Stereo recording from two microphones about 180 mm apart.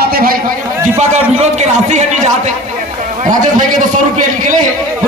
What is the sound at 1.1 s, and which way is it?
A man's voice, 40° right (ahead or behind).